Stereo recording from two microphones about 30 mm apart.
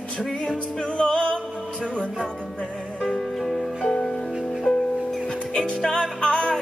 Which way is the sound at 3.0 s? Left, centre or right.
Centre.